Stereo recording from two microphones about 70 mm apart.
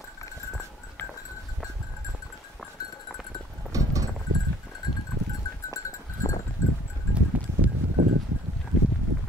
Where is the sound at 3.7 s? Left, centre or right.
Right.